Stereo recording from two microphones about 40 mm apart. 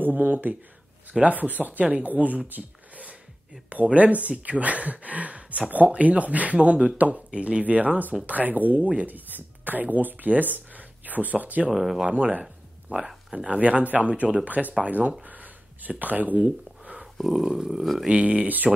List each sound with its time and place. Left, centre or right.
0.0 s speech: right
7.2 s speech: right
7.6 s speech: right
11.7 s speech: centre
12.1 s speech: right
12.9 s speech: centre
13.5 s speech: right
15.2 s a sound: right
16.0 s speech: right
17.3 s a sound: centre
18.0 s speech: right